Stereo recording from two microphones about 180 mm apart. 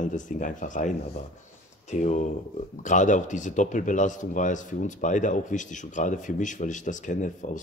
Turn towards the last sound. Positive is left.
turn(degrees=45)  # may be behind; listen again after turning